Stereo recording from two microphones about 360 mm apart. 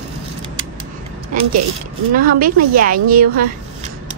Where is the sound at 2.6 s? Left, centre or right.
Right.